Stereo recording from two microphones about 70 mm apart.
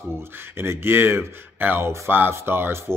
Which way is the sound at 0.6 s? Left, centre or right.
Right.